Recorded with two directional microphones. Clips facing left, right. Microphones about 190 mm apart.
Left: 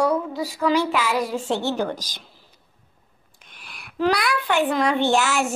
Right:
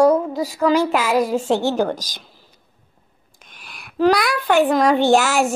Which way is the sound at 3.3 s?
45° right (ahead or behind).